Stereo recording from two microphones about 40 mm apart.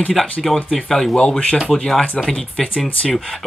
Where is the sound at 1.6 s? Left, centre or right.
Left.